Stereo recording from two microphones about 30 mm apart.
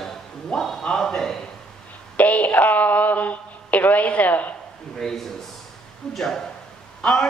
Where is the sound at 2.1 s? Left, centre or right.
Left.